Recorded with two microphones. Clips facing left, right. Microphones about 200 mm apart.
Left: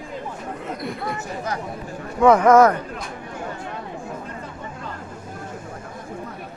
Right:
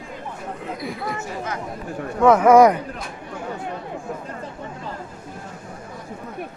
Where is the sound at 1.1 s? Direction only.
35° left (ahead or behind).